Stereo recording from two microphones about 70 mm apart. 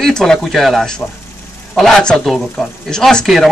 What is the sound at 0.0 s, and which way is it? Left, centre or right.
Speech, centre.